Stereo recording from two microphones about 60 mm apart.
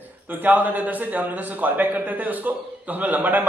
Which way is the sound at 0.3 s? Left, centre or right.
Right.